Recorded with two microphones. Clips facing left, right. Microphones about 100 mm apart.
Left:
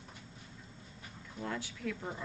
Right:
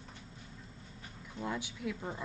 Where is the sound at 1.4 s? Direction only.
15° right (ahead or behind).